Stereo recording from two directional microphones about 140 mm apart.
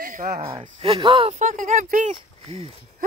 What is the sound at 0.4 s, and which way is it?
Speech, 40° right (ahead or behind).